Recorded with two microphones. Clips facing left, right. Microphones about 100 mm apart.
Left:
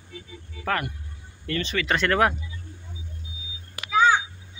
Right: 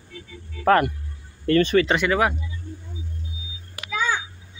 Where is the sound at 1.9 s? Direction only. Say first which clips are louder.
Right 1 dB; 10° right (ahead or behind).